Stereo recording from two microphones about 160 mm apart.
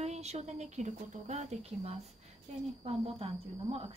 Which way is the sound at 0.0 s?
45° right (ahead or behind).